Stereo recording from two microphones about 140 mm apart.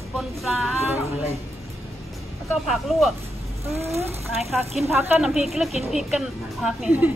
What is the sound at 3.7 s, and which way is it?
Speech, 50° right (ahead or behind).